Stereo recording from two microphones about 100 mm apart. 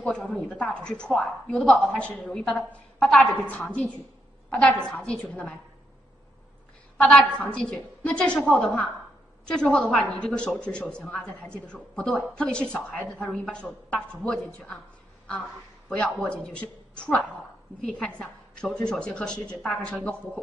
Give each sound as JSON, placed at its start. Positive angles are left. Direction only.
{"t": 0.0, "sound": "a woman's voice", "side_deg": 10}
{"t": 7.0, "sound": "a woman's voice", "side_deg": 10}
{"t": 15.9, "sound": "a woman's voice", "side_deg": 10}